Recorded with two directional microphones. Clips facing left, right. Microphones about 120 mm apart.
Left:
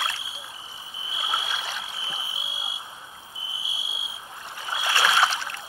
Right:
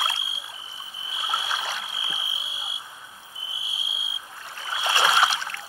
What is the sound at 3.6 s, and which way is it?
Cricket, centre (ahead or behind).